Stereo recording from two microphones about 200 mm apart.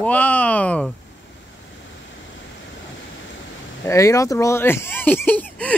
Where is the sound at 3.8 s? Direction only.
15° left (ahead or behind).